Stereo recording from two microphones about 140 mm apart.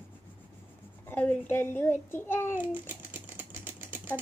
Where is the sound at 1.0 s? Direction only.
10° left (ahead or behind).